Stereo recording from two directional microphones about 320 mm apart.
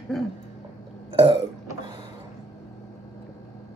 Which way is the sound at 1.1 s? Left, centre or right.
Centre.